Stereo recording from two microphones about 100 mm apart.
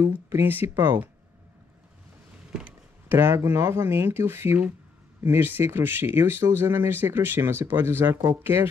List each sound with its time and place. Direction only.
0.0 s speech: 25° right (ahead or behind)
3.1 s speech: 25° right (ahead or behind)